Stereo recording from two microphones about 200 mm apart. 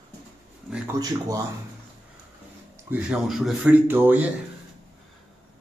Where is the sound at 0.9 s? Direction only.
15° right (ahead or behind).